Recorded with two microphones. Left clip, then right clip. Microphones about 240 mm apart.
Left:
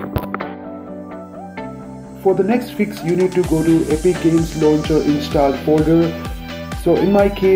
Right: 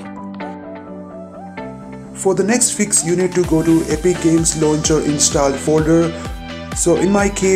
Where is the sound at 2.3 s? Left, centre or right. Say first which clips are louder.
Right 1 dB; right.